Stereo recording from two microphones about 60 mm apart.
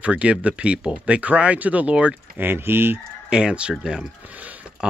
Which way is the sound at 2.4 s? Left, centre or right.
Right.